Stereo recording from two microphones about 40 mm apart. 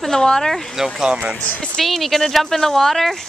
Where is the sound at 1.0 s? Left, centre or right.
Right.